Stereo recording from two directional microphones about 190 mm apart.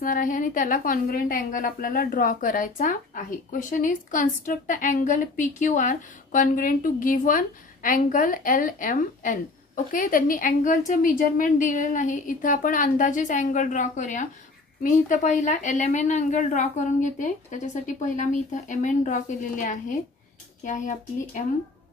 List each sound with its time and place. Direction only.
0.0 s a woman's voice: 45° left (ahead or behind)